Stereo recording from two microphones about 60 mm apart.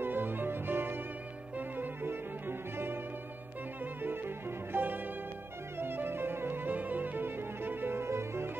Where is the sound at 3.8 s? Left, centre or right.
Right.